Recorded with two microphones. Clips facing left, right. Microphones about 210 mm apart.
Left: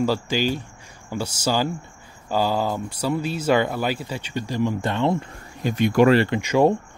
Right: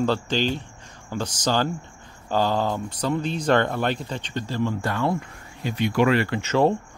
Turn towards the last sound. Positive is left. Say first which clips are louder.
# left 2 dB
turn(degrees=15)  # may be behind; listen again after turning